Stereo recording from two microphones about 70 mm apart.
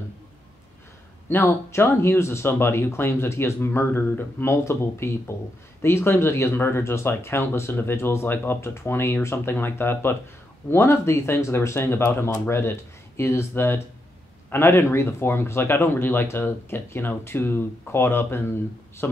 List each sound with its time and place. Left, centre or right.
1.3 s speech: left